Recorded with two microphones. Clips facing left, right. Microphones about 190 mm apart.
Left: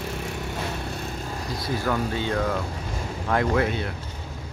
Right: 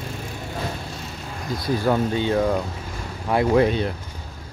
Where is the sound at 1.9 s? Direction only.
20° right (ahead or behind).